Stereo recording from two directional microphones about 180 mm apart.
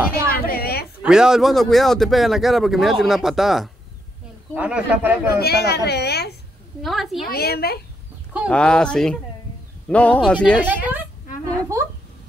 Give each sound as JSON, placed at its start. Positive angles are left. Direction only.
{"t": 0.3, "sound": "a sound", "side_deg": 55}
{"t": 1.0, "sound": "speech", "side_deg": -5}
{"t": 5.4, "sound": "a woman's voice", "side_deg": 65}
{"t": 6.8, "sound": "speech", "side_deg": 0}
{"t": 7.2, "sound": "a woman's voice", "side_deg": 60}
{"t": 8.5, "sound": "a man's voice", "side_deg": 5}
{"t": 10.6, "sound": "speech", "side_deg": -10}